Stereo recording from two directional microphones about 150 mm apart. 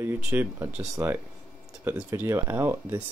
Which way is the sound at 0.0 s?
15° right (ahead or behind).